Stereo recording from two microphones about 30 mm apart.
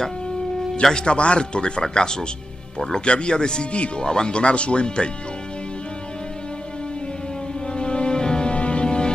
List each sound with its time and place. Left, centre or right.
0.9 s speech: left
3.7 s speech: left
4.0 s speech: left
7.6 s music: left
8.5 s music: left